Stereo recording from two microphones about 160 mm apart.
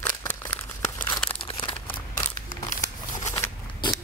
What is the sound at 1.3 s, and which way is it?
Crumpling, 35° left (ahead or behind).